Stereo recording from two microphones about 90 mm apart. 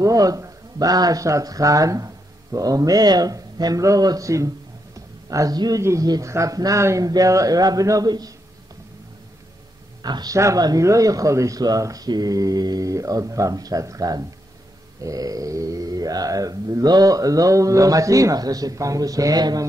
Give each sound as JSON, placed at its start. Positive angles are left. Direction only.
{"t": 0.0, "sound": "speech", "side_deg": -40}
{"t": 10.0, "sound": "speech", "side_deg": -50}
{"t": 10.3, "sound": "speech", "side_deg": -35}